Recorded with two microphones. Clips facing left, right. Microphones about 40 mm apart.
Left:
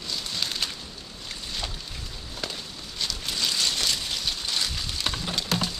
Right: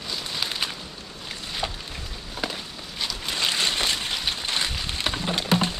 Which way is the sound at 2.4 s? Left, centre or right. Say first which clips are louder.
Right 4 dB; centre.